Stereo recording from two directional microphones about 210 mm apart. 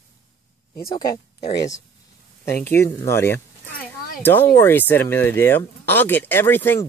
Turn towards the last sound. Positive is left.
turn(degrees=10)  # may be behind; listen again after turning